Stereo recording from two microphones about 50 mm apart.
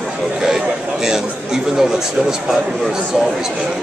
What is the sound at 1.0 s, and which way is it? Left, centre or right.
Speech, centre.